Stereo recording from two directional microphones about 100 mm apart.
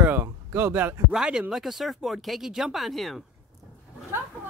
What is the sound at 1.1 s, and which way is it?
Speech, 5° right (ahead or behind).